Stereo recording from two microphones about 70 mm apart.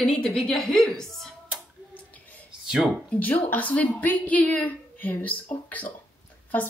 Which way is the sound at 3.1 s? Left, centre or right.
Left.